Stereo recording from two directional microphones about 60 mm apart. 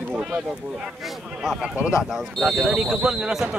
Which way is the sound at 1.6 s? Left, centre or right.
Right.